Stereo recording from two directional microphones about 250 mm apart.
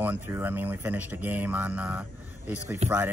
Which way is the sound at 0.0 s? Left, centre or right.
Centre.